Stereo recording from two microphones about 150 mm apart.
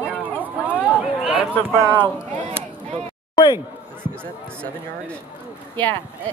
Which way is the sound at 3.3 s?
30° left (ahead or behind).